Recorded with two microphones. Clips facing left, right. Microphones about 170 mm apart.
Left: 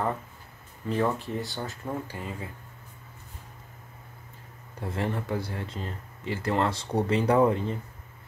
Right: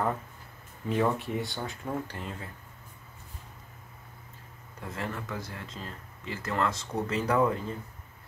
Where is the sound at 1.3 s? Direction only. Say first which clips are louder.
Even; centre (ahead or behind).